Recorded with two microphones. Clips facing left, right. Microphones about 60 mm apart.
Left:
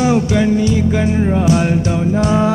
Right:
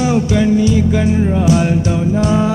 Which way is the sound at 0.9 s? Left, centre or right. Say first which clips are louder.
Right 1 dB; left.